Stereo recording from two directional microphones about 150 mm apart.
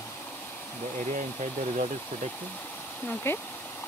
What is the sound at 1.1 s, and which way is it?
Speech, 50° right (ahead or behind).